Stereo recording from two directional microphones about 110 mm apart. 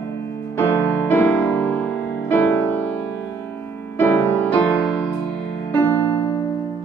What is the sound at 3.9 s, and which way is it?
Music, 25° left (ahead or behind).